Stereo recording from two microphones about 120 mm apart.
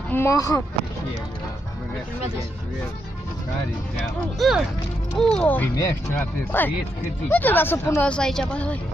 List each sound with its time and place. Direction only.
0.1 s speech: 25° left (ahead or behind)
4.4 s speech: centre (ahead or behind)
5.8 s speech: 25° left (ahead or behind)
8.1 s speech: 5° left (ahead or behind)